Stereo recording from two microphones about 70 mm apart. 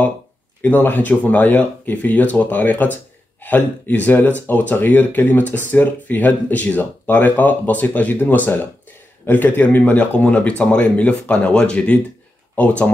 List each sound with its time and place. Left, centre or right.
0.6 s speech: left